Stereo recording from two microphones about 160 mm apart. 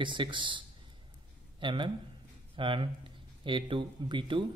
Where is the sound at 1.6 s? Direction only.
30° right (ahead or behind).